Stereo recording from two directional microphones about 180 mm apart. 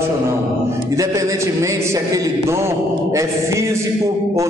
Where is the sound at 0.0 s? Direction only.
15° right (ahead or behind).